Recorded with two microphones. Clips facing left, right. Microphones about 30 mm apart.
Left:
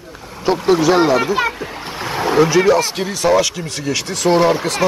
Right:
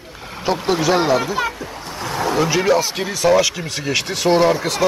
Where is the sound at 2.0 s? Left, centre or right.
Left.